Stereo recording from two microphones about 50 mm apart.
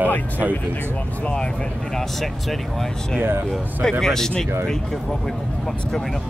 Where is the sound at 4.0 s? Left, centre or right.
Centre.